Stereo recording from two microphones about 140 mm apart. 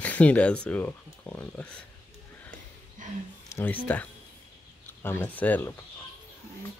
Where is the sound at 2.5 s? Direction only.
65° right (ahead or behind).